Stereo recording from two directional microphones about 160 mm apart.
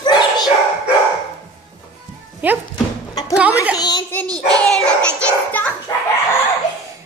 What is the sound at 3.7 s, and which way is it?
Speech, 25° left (ahead or behind).